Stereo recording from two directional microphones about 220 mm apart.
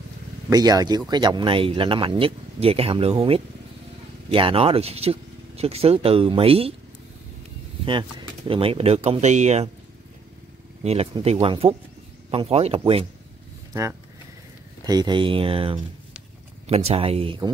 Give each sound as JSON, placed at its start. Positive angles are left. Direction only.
{"t": 0.5, "sound": "speech", "side_deg": -15}
{"t": 7.8, "sound": "speech", "side_deg": -20}
{"t": 10.8, "sound": "speech", "side_deg": -30}
{"t": 14.9, "sound": "speech", "side_deg": -20}